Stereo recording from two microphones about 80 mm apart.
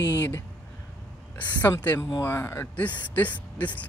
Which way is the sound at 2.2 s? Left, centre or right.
Left.